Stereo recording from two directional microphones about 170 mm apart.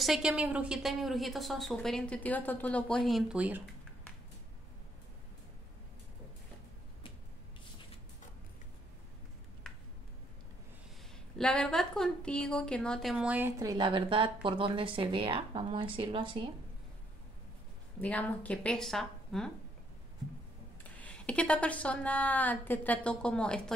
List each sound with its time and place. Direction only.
0.0 s a woman's voice: 5° right (ahead or behind)
3.1 s speech: centre (ahead or behind)
11.3 s a woman's voice: 5° left (ahead or behind); by 16.4 s 30° right (ahead or behind)
18.0 s a woman's voice: 10° left (ahead or behind)
20.9 s a woman's voice: 10° left (ahead or behind)